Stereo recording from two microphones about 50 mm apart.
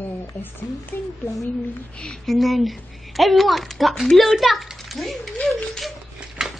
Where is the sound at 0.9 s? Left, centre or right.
Left.